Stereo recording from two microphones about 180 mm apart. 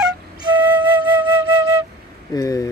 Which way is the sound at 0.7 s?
25° right (ahead or behind).